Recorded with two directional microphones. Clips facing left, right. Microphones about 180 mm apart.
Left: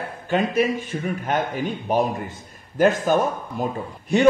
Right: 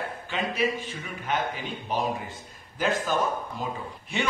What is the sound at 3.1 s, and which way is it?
A man's voice, 50° left (ahead or behind).